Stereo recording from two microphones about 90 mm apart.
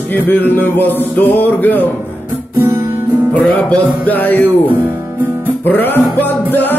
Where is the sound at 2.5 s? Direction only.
25° right (ahead or behind).